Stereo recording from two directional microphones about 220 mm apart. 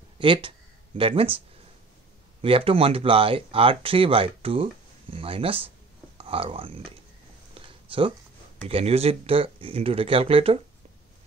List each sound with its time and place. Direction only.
0.2 s speech: 25° right (ahead or behind)
2.4 s speech: 25° right (ahead or behind)
7.5 s a sound: 25° right (ahead or behind)
8.6 s speech: 25° right (ahead or behind)